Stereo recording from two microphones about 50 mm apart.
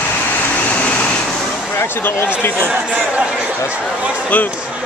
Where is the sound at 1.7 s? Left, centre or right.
Left.